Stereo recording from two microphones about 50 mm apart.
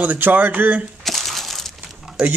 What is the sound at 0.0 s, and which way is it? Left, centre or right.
Speech, right.